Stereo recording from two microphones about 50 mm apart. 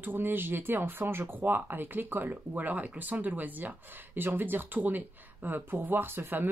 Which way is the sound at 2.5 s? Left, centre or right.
Right.